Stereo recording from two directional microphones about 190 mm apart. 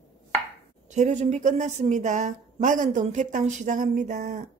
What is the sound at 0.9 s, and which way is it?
A woman's voice, 40° right (ahead or behind).